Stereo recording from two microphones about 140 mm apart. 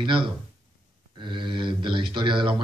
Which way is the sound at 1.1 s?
35° right (ahead or behind).